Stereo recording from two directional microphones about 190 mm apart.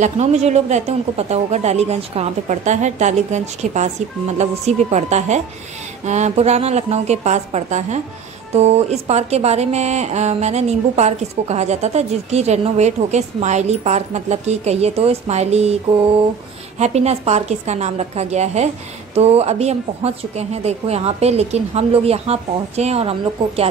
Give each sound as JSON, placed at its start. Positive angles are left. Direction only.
{"t": 0.0, "sound": "speech", "side_deg": -35}